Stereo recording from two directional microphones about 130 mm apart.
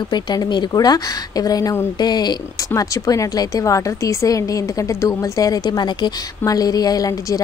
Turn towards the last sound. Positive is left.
turn(degrees=25)  # may be behind; listen again after turning